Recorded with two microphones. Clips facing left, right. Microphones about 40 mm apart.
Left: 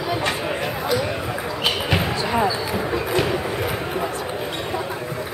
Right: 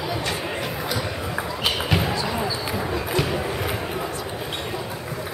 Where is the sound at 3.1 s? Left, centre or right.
Centre.